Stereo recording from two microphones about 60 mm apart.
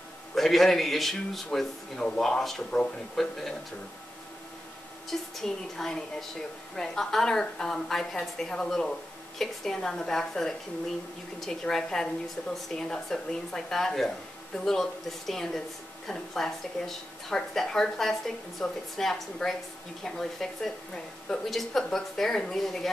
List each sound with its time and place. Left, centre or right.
0.3 s a woman's voice: centre
5.1 s a woman's voice: centre